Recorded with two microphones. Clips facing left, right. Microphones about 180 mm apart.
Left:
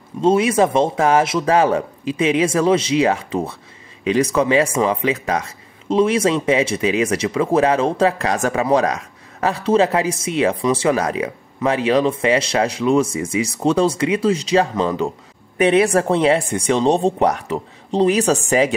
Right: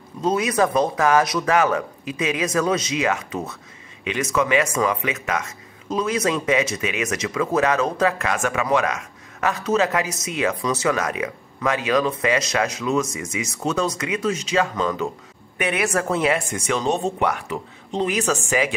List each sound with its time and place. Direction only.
0.2 s speech: 25° left (ahead or behind)